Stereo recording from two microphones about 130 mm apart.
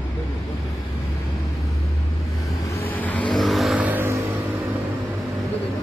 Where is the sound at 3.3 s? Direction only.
Centre (ahead or behind).